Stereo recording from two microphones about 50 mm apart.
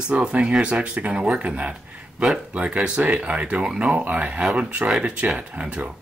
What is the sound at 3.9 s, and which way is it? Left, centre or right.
Speech, right.